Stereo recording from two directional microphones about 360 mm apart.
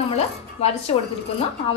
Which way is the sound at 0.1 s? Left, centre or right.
Centre.